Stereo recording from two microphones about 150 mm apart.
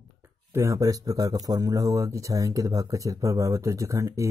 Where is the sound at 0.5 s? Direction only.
20° right (ahead or behind).